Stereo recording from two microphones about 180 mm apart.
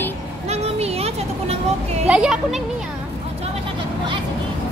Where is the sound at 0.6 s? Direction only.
35° right (ahead or behind).